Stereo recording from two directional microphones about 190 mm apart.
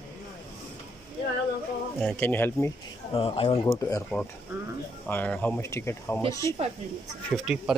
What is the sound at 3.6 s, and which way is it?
Speech, 15° left (ahead or behind).